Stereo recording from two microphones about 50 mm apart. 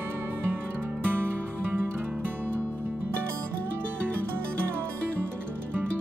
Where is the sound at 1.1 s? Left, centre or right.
Right.